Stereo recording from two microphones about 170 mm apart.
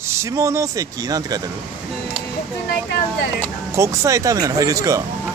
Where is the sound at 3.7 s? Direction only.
20° right (ahead or behind).